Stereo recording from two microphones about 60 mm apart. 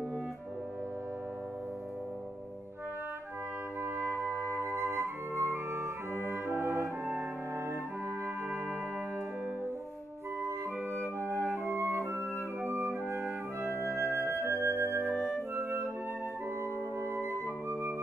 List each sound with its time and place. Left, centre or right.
4.1 s music: right
11.1 s flute: right
17.0 s music: right